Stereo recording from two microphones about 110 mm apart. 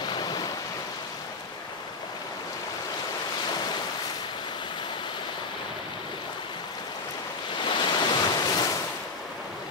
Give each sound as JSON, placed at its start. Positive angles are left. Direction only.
{"t": 0.0, "sound": "waves", "side_deg": 40}
{"t": 7.5, "sound": "waves", "side_deg": 45}